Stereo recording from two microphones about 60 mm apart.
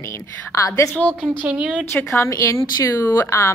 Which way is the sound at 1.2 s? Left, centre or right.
Right.